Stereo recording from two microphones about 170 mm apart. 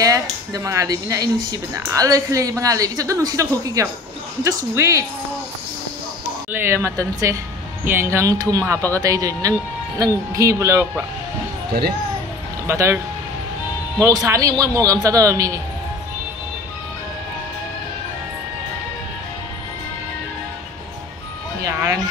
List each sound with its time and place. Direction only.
0.0 s speech: 20° right (ahead or behind)
6.5 s speech: 15° right (ahead or behind)
12.6 s speech: 15° right (ahead or behind)
21.6 s a sound: 15° right (ahead or behind)